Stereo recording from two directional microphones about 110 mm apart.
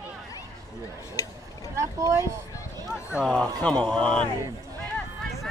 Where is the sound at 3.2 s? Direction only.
5° left (ahead or behind).